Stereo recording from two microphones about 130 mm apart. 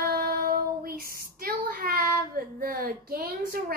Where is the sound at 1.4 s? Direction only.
90° right.